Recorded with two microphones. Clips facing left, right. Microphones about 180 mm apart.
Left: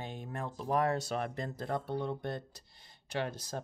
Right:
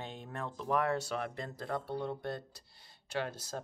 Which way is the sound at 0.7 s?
35° left (ahead or behind).